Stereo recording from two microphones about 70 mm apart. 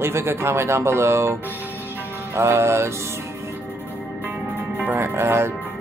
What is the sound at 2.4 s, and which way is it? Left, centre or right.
Speech, right.